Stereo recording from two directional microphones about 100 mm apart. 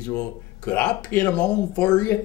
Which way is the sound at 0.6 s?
15° left (ahead or behind).